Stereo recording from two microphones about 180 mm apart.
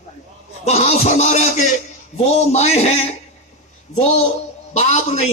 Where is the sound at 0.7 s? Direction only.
40° left (ahead or behind).